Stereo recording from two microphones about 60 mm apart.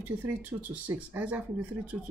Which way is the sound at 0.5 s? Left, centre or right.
Right.